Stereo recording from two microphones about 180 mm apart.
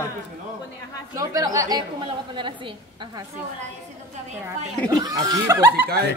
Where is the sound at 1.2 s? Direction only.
20° right (ahead or behind).